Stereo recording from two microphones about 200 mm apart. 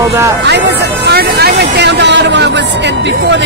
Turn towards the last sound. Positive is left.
turn(degrees=-60)  # may be behind; listen again after turning